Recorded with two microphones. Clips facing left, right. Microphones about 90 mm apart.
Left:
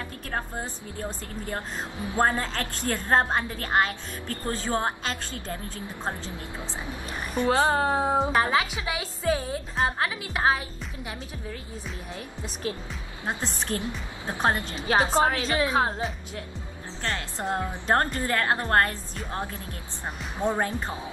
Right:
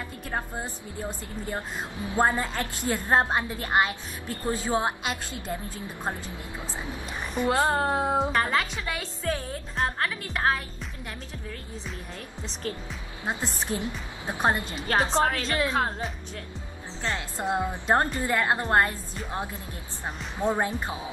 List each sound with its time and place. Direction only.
0.3 s a woman's voice: 5° right (ahead or behind)
2.0 s a woman's voice: 10° right (ahead or behind)
7.3 s a woman's voice: centre (ahead or behind)
13.4 s a woman's voice: 5° right (ahead or behind)
13.7 s a woman's voice: 15° right (ahead or behind)
15.0 s a woman's voice: 5° left (ahead or behind)
17.0 s a woman's voice: 10° right (ahead or behind)
20.4 s a woman's voice: 10° right (ahead or behind)